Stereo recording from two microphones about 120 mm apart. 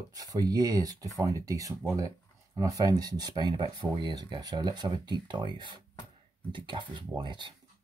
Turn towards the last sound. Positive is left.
turn(degrees=-40)  # may be behind; listen again after turning